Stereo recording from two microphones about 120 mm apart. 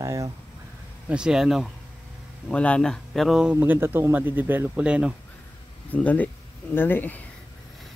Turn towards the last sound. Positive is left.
turn(degrees=15)  # may be behind; listen again after turning